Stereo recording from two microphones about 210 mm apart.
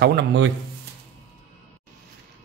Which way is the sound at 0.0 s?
50° right (ahead or behind).